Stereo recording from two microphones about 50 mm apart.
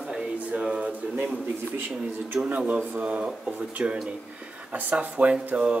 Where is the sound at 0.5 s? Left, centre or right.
Centre.